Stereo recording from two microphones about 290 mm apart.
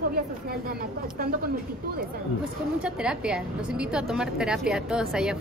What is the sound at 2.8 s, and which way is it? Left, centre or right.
Speech, centre.